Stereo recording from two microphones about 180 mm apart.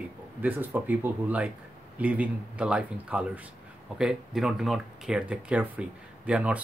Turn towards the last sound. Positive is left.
turn(degrees=-5)  # may be behind; listen again after turning